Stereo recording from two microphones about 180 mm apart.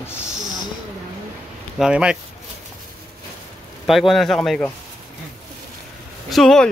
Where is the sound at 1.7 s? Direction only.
5° right (ahead or behind).